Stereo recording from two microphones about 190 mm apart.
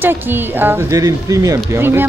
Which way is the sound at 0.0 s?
10° right (ahead or behind).